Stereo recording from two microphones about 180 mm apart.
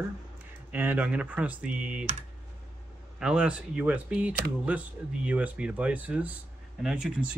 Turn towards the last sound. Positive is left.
turn(degrees=-5)  # may be behind; listen again after turning